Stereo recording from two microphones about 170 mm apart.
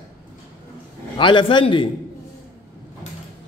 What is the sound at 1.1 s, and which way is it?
Speech, 30° left (ahead or behind).